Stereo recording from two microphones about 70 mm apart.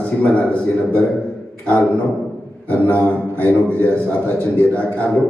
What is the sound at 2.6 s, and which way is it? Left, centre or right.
A man's voice, left.